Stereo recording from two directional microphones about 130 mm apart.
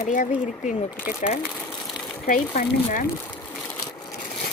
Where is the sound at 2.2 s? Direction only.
90° left.